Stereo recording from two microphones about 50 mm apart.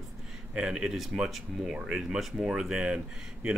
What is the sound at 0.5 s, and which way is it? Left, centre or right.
Speech, centre.